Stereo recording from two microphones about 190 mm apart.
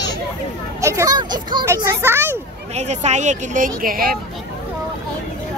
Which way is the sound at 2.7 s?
35° right (ahead or behind).